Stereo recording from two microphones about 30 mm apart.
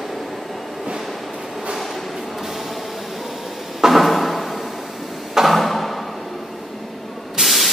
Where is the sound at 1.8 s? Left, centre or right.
Centre.